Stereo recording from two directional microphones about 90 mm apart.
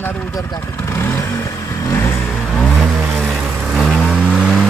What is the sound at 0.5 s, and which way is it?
Vehicle, 30° left (ahead or behind).